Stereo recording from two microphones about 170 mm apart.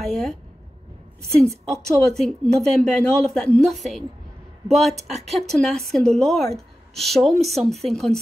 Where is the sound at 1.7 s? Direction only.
5° left (ahead or behind).